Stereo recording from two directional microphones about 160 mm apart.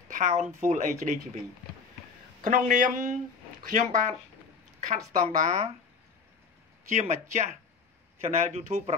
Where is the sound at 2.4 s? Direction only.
55° right (ahead or behind).